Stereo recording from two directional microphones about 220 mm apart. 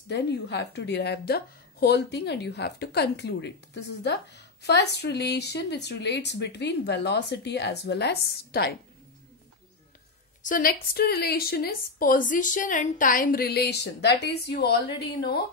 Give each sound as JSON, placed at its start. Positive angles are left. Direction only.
{"t": 0.1, "sound": "a woman's voice", "side_deg": 50}
{"t": 10.4, "sound": "a woman's voice", "side_deg": 40}